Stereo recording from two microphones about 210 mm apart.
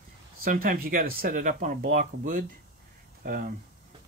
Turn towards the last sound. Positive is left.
turn(degrees=-45)  # may be behind; listen again after turning